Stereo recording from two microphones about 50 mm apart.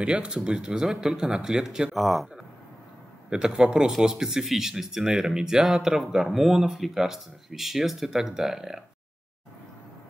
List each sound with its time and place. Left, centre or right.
0.0 s speech: right
1.9 s speech: centre
3.3 s speech: centre